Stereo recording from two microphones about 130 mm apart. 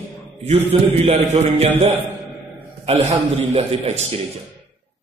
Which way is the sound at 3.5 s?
50° right (ahead or behind).